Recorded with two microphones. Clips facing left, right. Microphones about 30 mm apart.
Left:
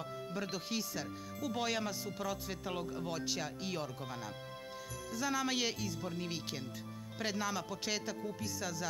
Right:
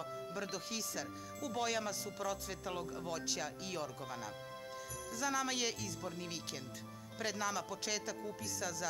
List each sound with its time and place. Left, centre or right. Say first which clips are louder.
0.3 s speech: left 5 dB; centre
5.1 s speech: left 2 dB; centre